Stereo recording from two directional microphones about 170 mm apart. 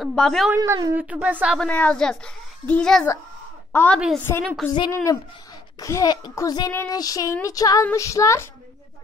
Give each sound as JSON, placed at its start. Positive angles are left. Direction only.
{"t": 0.0, "sound": "a woman's voice", "side_deg": 5}
{"t": 0.5, "sound": "a woman's voice", "side_deg": -15}
{"t": 1.6, "sound": "a woman's voice", "side_deg": 10}